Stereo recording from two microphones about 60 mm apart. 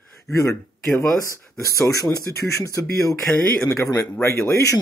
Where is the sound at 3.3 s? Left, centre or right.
Centre.